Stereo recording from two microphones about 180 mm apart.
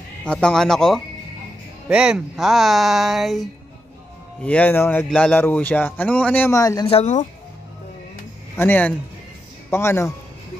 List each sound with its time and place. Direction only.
0.2 s speech: 5° left (ahead or behind)
6.9 s speech: 40° left (ahead or behind)
8.5 s speech: 10° left (ahead or behind)